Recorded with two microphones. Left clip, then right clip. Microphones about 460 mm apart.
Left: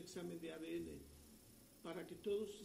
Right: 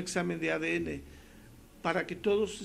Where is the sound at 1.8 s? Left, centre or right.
Right.